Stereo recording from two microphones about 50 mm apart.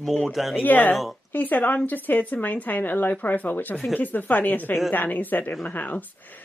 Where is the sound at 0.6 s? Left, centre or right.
Left.